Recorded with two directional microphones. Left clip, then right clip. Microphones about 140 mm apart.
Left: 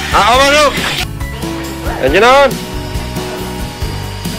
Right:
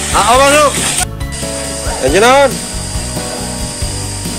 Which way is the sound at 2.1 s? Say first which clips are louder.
Left 1 dB; 25° right (ahead or behind).